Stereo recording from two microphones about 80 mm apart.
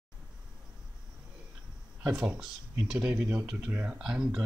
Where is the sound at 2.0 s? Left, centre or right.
Centre.